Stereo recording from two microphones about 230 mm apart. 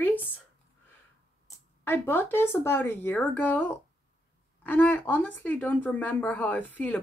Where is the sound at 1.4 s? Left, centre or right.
Centre.